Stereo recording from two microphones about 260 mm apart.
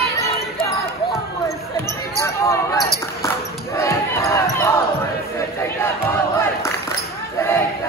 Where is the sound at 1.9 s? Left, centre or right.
Centre.